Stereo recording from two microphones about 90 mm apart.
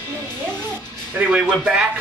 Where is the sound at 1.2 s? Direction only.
20° right (ahead or behind).